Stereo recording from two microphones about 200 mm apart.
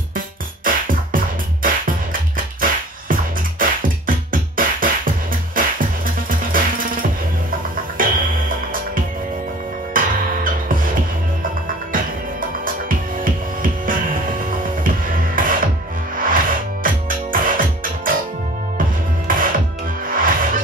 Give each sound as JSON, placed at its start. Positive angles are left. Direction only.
{"t": 0.7, "sound": "music", "side_deg": -45}
{"t": 16.8, "sound": "music", "side_deg": -45}
{"t": 19.2, "sound": "music", "side_deg": -45}